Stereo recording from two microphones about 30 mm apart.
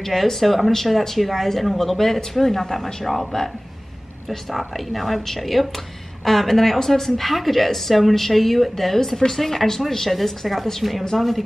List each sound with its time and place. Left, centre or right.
0.0 s a woman's voice: centre
3.1 s a woman's voice: centre